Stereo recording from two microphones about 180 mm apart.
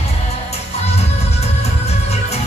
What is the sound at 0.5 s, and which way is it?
Music, 35° left (ahead or behind).